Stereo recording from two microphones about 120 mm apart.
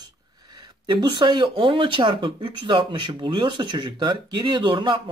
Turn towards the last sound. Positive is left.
turn(degrees=-40)  # may be behind; listen again after turning